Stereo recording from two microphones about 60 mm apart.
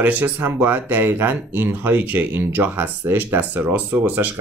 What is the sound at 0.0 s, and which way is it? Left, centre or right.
Speech, right.